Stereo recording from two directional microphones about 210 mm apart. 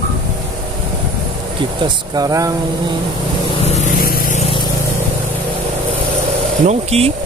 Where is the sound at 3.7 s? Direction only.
35° left (ahead or behind).